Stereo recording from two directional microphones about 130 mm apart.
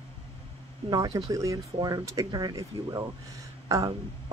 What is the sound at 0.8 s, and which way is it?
Speech, 30° right (ahead or behind).